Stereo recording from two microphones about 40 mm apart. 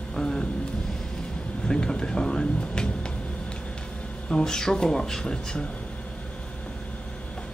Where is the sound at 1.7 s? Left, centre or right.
Centre.